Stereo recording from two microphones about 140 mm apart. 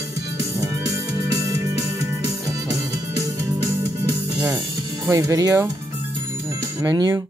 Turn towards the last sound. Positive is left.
turn(degrees=-25)  # may be behind; listen again after turning